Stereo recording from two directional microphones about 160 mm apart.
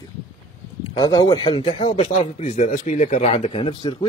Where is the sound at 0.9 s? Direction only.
25° left (ahead or behind).